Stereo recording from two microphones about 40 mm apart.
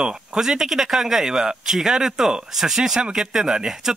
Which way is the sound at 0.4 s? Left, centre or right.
Centre.